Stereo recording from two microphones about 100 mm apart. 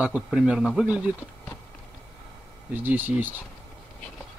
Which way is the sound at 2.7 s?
20° right (ahead or behind).